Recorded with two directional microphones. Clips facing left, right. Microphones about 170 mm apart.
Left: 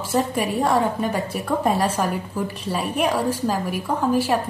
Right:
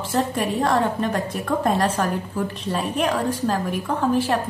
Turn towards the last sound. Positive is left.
turn(degrees=10)  # may be behind; listen again after turning